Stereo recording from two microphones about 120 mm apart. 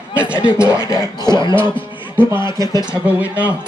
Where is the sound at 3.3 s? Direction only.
15° right (ahead or behind).